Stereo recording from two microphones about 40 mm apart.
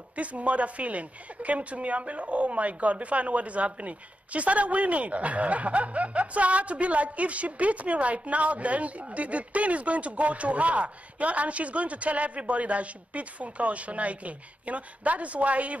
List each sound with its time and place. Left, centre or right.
0.1 s speech: right